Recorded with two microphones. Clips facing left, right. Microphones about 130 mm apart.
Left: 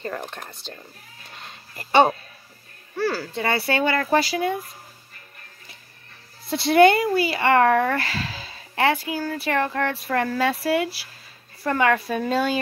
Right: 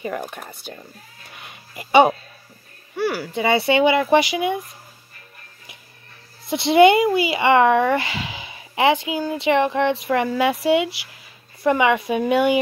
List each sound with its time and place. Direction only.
0.0 s speech: 10° right (ahead or behind)
1.3 s a sound: 15° right (ahead or behind)
3.0 s speech: 15° right (ahead or behind)
6.4 s speech: 20° right (ahead or behind)